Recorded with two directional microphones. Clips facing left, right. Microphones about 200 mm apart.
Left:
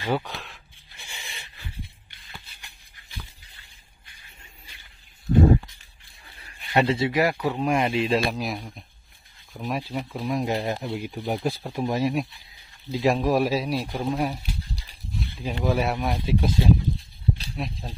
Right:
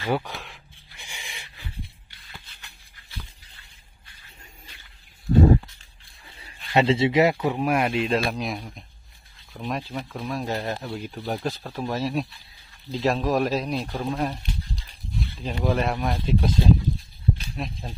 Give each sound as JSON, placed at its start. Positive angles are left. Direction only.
{"t": 0.0, "sound": "a sound", "side_deg": -10}
{"t": 6.7, "sound": "speech", "side_deg": -25}
{"t": 7.5, "sound": "speech", "side_deg": -5}
{"t": 15.1, "sound": "a sound", "side_deg": 0}
{"t": 15.5, "sound": "speech", "side_deg": 5}
{"t": 17.6, "sound": "speech", "side_deg": 0}